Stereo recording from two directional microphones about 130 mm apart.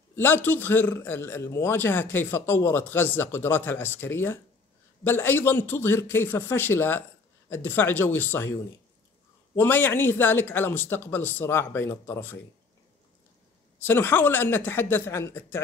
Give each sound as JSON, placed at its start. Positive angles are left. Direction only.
{"t": 0.1, "sound": "a man's voice", "side_deg": 15}
{"t": 9.6, "sound": "a man's voice", "side_deg": 15}
{"t": 13.8, "sound": "a man's voice", "side_deg": 15}